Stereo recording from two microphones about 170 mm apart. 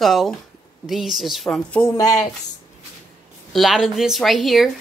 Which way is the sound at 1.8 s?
20° left (ahead or behind).